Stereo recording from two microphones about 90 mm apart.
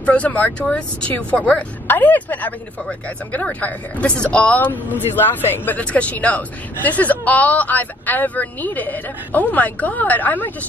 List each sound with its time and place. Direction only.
0.0 s speech: 15° left (ahead or behind)